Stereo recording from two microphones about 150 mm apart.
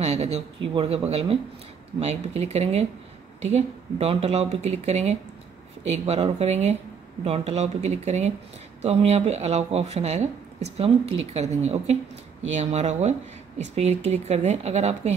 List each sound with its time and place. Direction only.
0.0 s speech: 45° right (ahead or behind)